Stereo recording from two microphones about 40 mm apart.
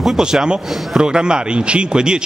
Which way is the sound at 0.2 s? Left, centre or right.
Centre.